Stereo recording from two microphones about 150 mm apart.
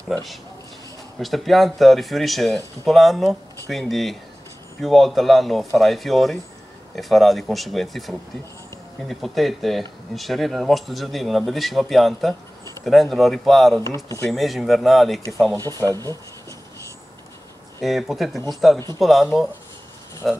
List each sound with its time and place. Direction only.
0.1 s speech: centre (ahead or behind)
13.8 s speech: 20° left (ahead or behind)
14.3 s speech: centre (ahead or behind)
15.7 s speech: 20° left (ahead or behind)
17.8 s speech: centre (ahead or behind)
20.2 s speech: centre (ahead or behind)